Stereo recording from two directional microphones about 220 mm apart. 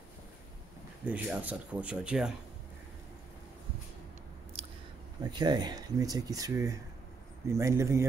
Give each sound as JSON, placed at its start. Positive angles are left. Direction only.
{"t": 1.0, "sound": "speech", "side_deg": -5}
{"t": 4.6, "sound": "a sound", "side_deg": -30}
{"t": 5.2, "sound": "speech", "side_deg": -20}